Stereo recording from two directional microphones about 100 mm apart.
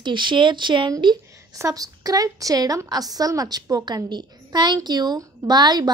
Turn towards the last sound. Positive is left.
turn(degrees=-45)  # may be behind; listen again after turning